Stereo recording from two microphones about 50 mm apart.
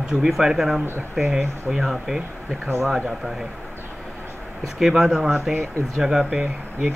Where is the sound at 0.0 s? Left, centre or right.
Centre.